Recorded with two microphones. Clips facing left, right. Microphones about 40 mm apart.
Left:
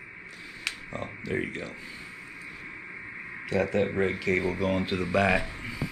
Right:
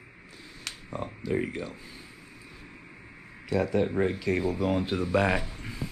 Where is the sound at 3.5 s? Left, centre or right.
Left.